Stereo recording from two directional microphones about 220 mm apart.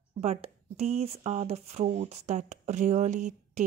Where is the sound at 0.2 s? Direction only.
30° right (ahead or behind).